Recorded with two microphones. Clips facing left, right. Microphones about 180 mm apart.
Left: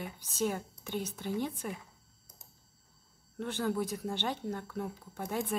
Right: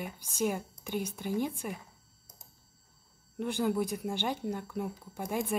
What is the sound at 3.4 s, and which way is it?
Speech, 10° right (ahead or behind).